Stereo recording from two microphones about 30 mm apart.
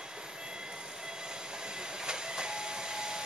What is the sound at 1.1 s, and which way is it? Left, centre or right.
Train, right.